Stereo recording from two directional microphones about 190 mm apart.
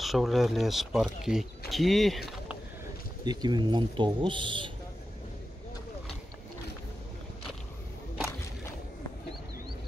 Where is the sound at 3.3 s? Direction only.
20° right (ahead or behind).